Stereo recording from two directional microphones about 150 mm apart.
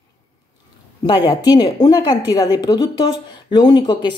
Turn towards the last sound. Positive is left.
turn(degrees=30)  # may be behind; listen again after turning